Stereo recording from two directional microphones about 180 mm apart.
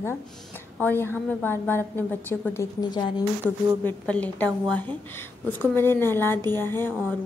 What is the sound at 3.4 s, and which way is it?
A woman's voice, 10° left (ahead or behind).